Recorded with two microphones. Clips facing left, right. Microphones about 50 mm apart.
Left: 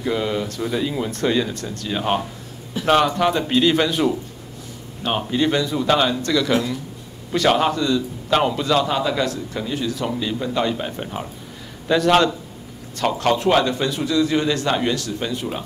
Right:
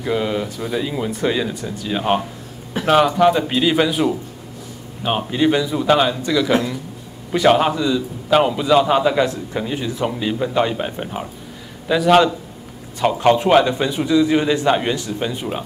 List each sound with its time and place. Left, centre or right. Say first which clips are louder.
0.0 s a man's voice: right 2 dB; centre